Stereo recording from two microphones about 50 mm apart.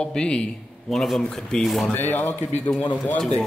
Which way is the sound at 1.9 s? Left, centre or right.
Left.